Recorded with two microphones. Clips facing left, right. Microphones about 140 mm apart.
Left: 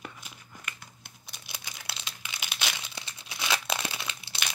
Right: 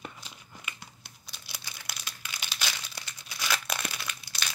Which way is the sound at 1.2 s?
20° left (ahead or behind).